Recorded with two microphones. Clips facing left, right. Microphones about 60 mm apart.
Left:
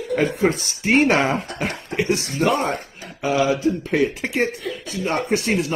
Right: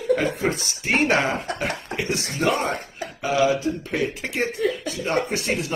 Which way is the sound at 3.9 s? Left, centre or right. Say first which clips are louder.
Left 5 dB; left.